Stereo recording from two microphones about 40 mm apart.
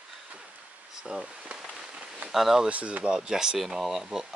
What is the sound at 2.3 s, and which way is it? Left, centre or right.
Speech, centre.